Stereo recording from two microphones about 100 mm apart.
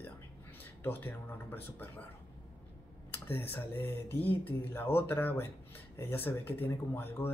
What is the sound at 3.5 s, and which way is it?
Speech, 20° left (ahead or behind).